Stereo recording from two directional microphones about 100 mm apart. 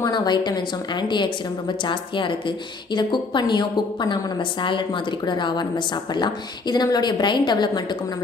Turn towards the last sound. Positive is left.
turn(degrees=50)  # may be behind; listen again after turning